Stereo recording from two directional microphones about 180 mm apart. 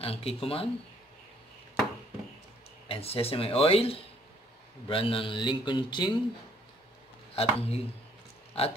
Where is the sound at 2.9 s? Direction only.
35° left (ahead or behind).